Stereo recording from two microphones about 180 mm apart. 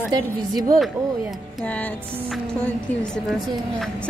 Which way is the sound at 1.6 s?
5° left (ahead or behind).